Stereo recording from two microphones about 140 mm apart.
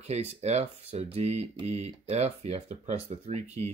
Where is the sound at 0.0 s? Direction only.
50° right (ahead or behind).